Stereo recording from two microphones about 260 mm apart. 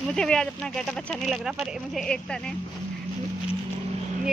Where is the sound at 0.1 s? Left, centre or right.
Centre.